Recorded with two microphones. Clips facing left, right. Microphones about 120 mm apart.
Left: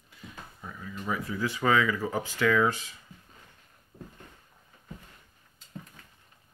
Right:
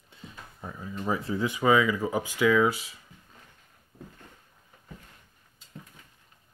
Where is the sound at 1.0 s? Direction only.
30° right (ahead or behind).